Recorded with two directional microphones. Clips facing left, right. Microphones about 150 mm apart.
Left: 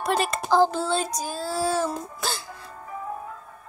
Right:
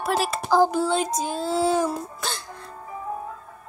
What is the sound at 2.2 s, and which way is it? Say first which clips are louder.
Music: left 1 dB; 5° left (ahead or behind).